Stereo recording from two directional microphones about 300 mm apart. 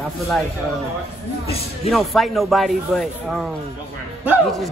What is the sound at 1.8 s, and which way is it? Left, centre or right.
Speech, centre.